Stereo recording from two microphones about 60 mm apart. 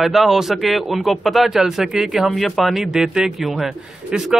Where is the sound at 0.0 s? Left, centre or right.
Centre.